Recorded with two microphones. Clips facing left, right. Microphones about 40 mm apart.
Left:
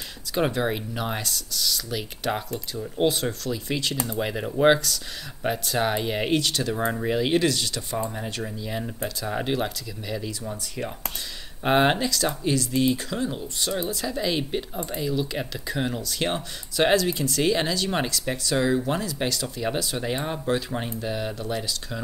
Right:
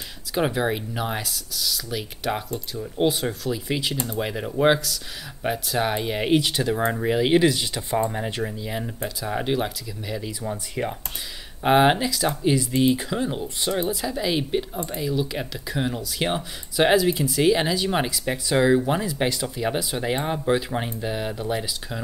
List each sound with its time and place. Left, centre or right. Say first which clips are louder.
0.3 s speech: right 1 dB; centre
6.4 s speech: right 2 dB; centre
8.5 s speech: right 1 dB; centre
10.5 s speech: right 4 dB; centre
11.6 s speech: right 3 dB; centre